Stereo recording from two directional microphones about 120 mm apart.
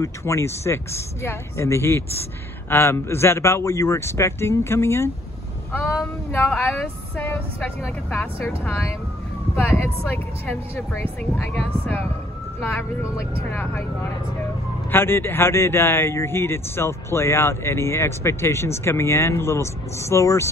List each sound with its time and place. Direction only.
0.0 s speech: 25° left (ahead or behind)
6.3 s speech: 20° left (ahead or behind)